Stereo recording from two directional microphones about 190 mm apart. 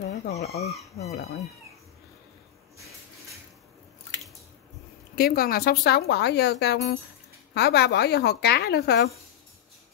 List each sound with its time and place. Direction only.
0.1 s speech: 35° left (ahead or behind)
0.5 s speech: 15° left (ahead or behind)
1.1 s speech: 55° left (ahead or behind)
5.1 s speech: 50° left (ahead or behind)